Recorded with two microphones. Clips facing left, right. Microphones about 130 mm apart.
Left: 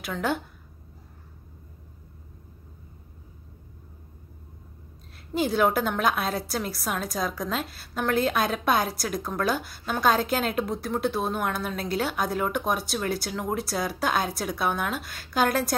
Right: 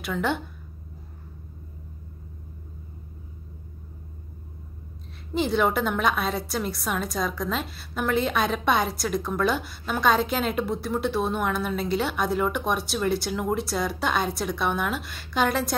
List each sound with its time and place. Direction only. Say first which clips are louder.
0.0 s a woman's voice: right 1 dB; centre (ahead or behind)
5.3 s a woman's voice: even; centre (ahead or behind)